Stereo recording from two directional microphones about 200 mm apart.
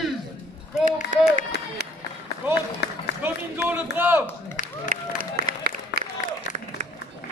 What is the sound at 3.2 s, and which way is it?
A man's voice, 10° right (ahead or behind).